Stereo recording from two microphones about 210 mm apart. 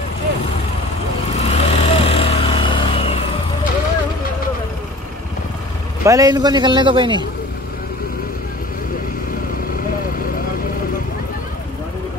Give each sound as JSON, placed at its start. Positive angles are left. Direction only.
{"t": 1.4, "sound": "vehicle", "side_deg": 30}
{"t": 6.0, "sound": "a man's voice", "side_deg": -15}